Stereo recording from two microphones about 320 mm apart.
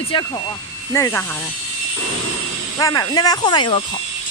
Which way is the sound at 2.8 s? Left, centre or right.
Centre.